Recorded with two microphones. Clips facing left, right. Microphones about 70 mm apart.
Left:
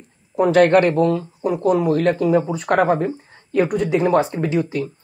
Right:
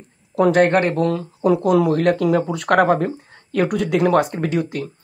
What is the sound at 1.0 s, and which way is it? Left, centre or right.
Speech, right.